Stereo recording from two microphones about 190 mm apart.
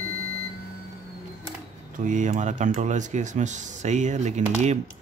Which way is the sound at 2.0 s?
40° right (ahead or behind).